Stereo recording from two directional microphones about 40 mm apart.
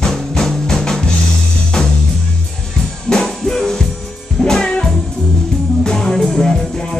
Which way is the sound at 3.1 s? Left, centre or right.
Centre.